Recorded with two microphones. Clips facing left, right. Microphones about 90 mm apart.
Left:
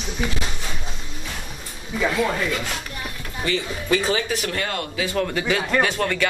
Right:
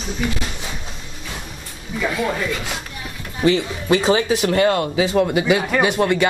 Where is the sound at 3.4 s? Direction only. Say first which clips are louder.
Right 8 dB; 30° right (ahead or behind).